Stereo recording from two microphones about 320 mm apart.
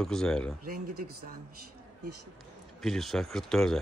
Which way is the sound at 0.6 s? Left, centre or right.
Right.